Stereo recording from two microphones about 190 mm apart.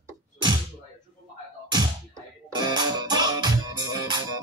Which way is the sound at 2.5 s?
20° right (ahead or behind).